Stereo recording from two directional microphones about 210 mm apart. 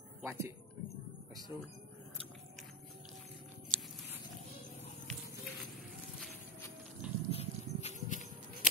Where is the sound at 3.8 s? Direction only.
Centre (ahead or behind).